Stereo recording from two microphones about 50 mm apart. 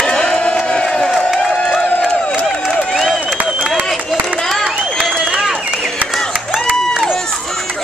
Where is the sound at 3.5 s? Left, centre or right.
Centre.